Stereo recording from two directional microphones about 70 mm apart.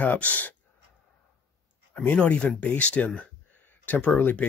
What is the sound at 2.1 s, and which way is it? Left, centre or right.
Speech, centre.